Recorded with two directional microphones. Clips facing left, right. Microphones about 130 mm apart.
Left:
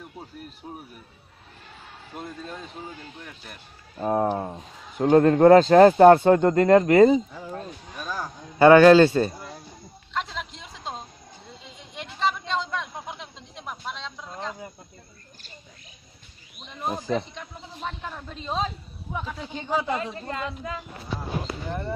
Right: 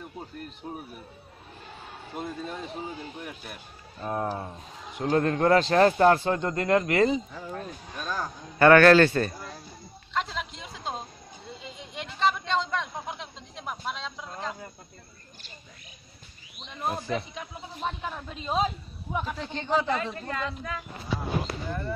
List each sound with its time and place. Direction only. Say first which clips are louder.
0.4 s speech: right 2 dB; 5° left (ahead or behind)
2.1 s speech: right 2 dB; 5° right (ahead or behind)
4.0 s speech: left 7 dB; 35° left (ahead or behind)
6.2 s speech: left 9 dB; 45° left (ahead or behind)
7.9 s a sound: even; 5° left (ahead or behind)
8.5 s speech: left 4 dB; 15° left (ahead or behind)
10.1 s a sound: even; centre (ahead or behind)
16.5 s a sound: even; centre (ahead or behind)
17.1 s speech: left 4 dB; 5° right (ahead or behind)
19.3 s speech: even; 10° left (ahead or behind)